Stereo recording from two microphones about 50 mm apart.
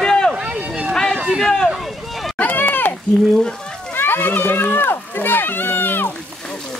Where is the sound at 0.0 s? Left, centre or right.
Centre.